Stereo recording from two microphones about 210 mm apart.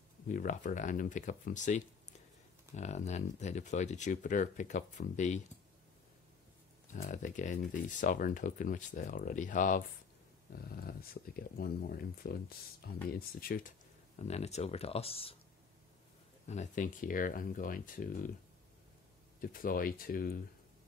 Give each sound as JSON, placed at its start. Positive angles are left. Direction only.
{"t": 0.3, "sound": "speech", "side_deg": 40}
{"t": 6.9, "sound": "speech", "side_deg": 35}
{"t": 16.4, "sound": "speech", "side_deg": 35}
{"t": 19.4, "sound": "speech", "side_deg": 45}